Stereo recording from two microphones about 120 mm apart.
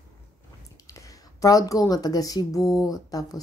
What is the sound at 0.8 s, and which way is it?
Speech, 30° left (ahead or behind).